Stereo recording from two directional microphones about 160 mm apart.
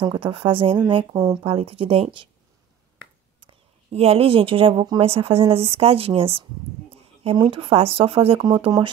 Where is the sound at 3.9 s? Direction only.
40° right (ahead or behind).